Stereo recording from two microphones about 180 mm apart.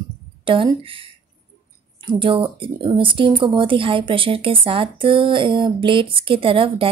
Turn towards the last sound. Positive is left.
turn(degrees=-30)  # may be behind; listen again after turning